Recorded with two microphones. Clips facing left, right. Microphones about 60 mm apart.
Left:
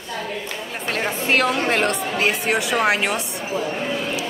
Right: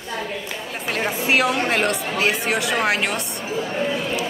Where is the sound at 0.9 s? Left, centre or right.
Centre.